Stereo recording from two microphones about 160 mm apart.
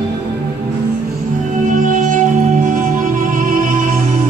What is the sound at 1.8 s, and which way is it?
Music, 55° right (ahead or behind).